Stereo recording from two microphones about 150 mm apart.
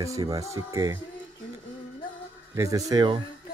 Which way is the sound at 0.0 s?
20° right (ahead or behind).